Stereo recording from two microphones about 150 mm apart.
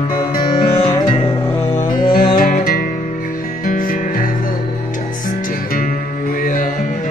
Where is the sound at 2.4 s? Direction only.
70° left (ahead or behind).